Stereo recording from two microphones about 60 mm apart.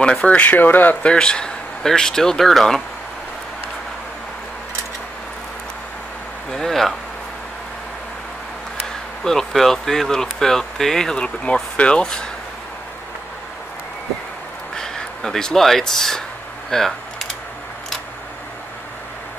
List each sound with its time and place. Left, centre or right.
0.0 s speech: centre
1.0 s speech: centre
6.5 s a sound: centre
9.2 s speech: centre
14.8 s speech: centre
16.7 s a sound: centre